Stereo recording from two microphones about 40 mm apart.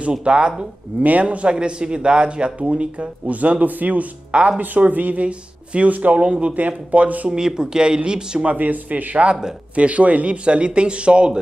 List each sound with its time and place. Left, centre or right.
0.1 s speech: right
1.0 s speech: right
7.2 s speech: centre
8.5 s speech: right